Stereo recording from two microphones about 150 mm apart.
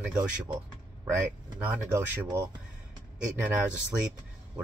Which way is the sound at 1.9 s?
20° right (ahead or behind).